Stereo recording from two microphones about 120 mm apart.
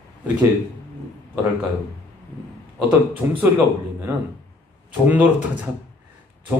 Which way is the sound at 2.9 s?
10° right (ahead or behind).